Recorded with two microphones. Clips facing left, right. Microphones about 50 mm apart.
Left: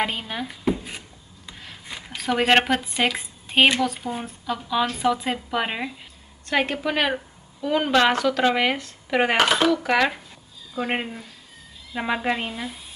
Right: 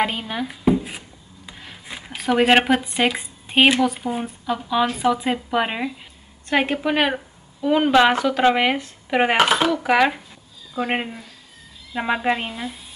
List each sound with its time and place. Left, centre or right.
0.0 s a sound: centre
3.0 s speech: centre
6.5 s speech: centre